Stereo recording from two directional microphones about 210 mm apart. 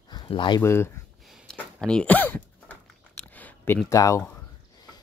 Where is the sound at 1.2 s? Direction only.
Centre (ahead or behind).